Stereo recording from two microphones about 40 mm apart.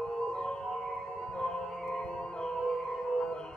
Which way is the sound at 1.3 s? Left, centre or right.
Centre.